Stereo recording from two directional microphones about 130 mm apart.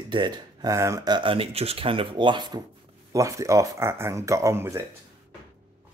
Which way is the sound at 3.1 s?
25° right (ahead or behind).